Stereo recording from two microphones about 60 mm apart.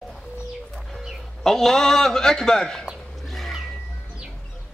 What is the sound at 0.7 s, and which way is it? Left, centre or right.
Bird, centre.